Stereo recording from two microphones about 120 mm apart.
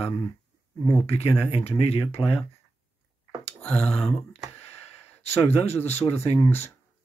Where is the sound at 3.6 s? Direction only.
10° left (ahead or behind).